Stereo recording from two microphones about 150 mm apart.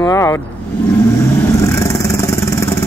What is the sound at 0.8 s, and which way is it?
Vehicle, 20° left (ahead or behind).